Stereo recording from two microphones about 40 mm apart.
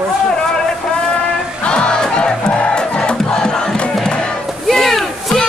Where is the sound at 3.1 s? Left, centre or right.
Centre.